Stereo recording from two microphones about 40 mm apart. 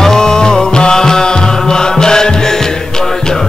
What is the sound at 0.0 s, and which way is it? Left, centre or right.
Music, centre.